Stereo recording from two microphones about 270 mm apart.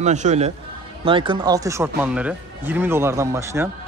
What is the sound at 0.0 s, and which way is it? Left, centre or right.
A man's voice, right.